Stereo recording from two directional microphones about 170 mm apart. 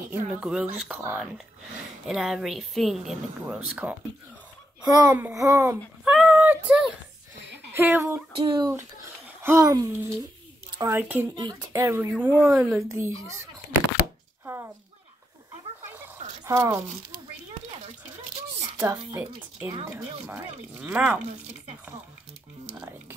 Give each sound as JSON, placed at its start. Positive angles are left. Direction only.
{"t": 0.1, "sound": "a woman's voice", "side_deg": -5}
{"t": 4.8, "sound": "a child's voice", "side_deg": -20}
{"t": 6.0, "sound": "a sound", "side_deg": -5}
{"t": 7.7, "sound": "speech", "side_deg": -10}
{"t": 8.4, "sound": "speech", "side_deg": -30}
{"t": 9.4, "sound": "speech", "side_deg": -15}
{"t": 11.3, "sound": "speech", "side_deg": -20}
{"t": 12.4, "sound": "a woman's voice", "side_deg": -5}
{"t": 12.7, "sound": "speech", "side_deg": -15}
{"t": 14.4, "sound": "a sound", "side_deg": -15}
{"t": 16.4, "sound": "speech", "side_deg": -20}
{"t": 18.8, "sound": "speech", "side_deg": -15}